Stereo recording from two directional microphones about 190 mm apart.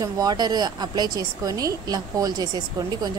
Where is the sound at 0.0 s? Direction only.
20° right (ahead or behind).